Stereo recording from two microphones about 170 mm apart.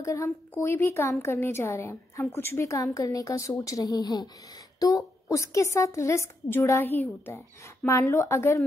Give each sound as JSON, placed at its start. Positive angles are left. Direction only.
{"t": 0.0, "sound": "a woman's voice", "side_deg": 20}